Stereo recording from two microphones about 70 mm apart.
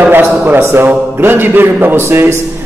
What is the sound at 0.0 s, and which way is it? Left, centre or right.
A man's voice, right.